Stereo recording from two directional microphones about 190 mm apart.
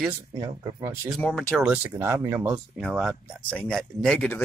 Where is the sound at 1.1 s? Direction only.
5° left (ahead or behind); by 2.5 s 10° right (ahead or behind).